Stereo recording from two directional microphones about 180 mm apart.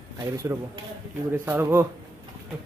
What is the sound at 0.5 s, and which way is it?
Speech, 15° right (ahead or behind).